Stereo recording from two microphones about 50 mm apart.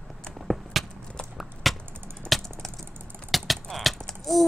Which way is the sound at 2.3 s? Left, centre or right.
Centre.